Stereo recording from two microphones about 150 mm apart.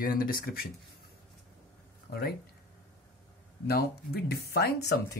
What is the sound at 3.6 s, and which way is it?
Speech, 90° left.